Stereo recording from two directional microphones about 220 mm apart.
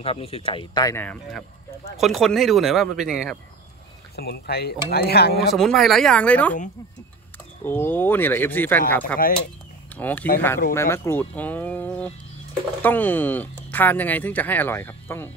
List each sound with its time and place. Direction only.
0.0 s a man's voice: 25° left (ahead or behind); by 3.3 s 5° right (ahead or behind)
4.2 s speech: 45° left (ahead or behind)
5.5 s a man's voice: centre (ahead or behind)
7.6 s speech: 10° left (ahead or behind)